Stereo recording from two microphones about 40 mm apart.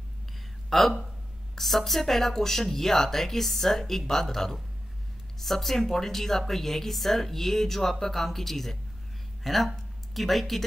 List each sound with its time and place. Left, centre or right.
0.7 s speech: centre